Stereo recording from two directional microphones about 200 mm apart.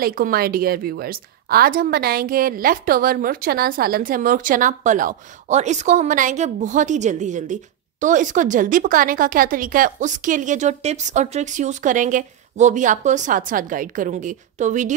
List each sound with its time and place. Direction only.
0.0 s a woman's voice: 45° right (ahead or behind)